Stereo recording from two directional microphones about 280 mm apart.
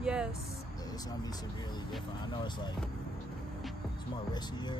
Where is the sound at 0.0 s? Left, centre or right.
Centre.